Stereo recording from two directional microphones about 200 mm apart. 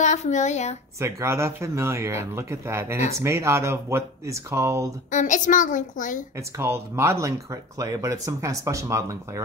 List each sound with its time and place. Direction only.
0.0 s a child's voice: 35° left (ahead or behind)
0.9 s speech: 15° right (ahead or behind)
5.1 s a child's voice: 40° left (ahead or behind)
6.6 s speech: 15° right (ahead or behind)